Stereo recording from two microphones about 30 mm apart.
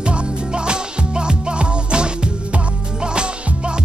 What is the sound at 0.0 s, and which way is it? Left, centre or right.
Music, right.